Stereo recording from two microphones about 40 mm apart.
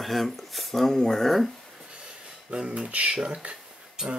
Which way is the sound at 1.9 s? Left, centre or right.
Right.